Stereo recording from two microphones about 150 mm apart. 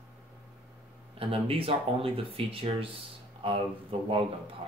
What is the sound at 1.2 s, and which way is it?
Speech, 40° right (ahead or behind).